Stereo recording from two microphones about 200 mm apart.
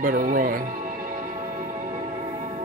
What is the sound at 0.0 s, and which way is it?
Music, 40° right (ahead or behind).